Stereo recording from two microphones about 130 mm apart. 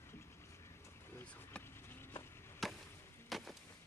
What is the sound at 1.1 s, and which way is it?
Vehicle, 10° left (ahead or behind).